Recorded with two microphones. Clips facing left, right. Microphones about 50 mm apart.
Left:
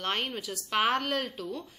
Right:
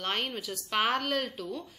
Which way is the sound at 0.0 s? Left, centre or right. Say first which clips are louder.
Left 1 dB; centre.